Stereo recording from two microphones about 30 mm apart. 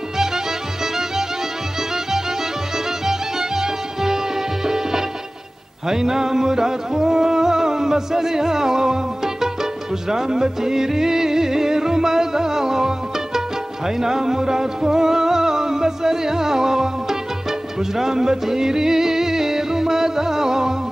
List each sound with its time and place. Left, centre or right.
3.1 s music: centre